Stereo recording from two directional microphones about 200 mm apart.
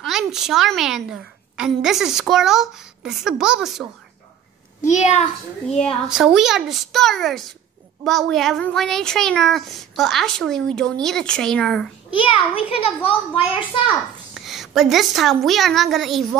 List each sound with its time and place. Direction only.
0.0 s speech: centre (ahead or behind)
4.8 s a child's voice: 35° left (ahead or behind)
5.8 s speech: centre (ahead or behind)
12.2 s a child's voice: 30° left (ahead or behind)
14.3 s a woman's voice: centre (ahead or behind)